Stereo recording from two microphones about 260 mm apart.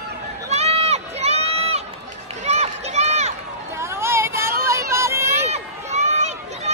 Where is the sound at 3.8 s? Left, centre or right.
Centre.